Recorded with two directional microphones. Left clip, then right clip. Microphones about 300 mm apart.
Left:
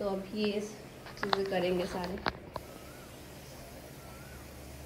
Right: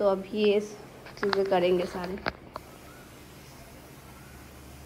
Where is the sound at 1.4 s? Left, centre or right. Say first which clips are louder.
Right 7 dB; centre.